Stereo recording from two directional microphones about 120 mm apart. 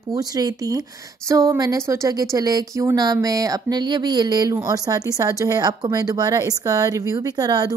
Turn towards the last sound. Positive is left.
turn(degrees=-30)  # may be behind; listen again after turning